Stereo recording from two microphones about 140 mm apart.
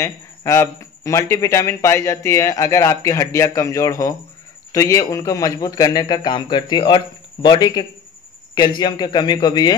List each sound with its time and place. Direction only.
0.0 s a man's voice: 20° left (ahead or behind)